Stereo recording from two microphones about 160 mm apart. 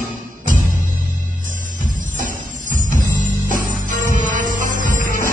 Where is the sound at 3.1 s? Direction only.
50° right (ahead or behind).